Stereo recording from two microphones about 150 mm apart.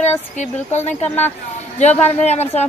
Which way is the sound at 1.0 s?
10° left (ahead or behind).